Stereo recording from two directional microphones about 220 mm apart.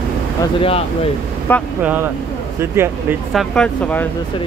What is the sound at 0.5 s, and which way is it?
Speech, 25° left (ahead or behind).